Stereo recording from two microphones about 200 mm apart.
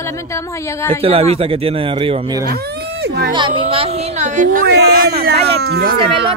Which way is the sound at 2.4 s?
50° right (ahead or behind).